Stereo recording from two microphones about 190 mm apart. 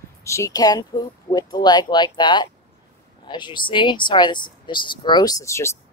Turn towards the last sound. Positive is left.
turn(degrees=15)  # may be behind; listen again after turning